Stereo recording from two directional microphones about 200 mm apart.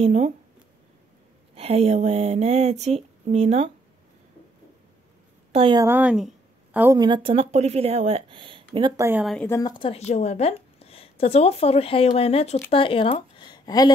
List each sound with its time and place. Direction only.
0.0 s speech: 35° right (ahead or behind)
1.5 s speech: 30° right (ahead or behind)
5.5 s a woman's voice: 25° right (ahead or behind)
5.9 s a woman's voice: 5° right (ahead or behind)
7.0 s speech: 25° right (ahead or behind)
9.2 s speech: centre (ahead or behind)
9.5 s a woman's voice: 20° left (ahead or behind)